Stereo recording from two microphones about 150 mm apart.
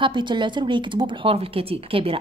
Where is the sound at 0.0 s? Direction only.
30° right (ahead or behind).